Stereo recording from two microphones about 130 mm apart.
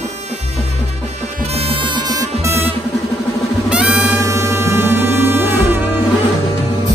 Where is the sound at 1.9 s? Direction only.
30° right (ahead or behind).